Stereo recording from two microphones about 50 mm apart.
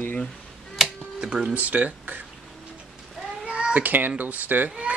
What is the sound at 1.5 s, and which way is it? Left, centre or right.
Speech, right.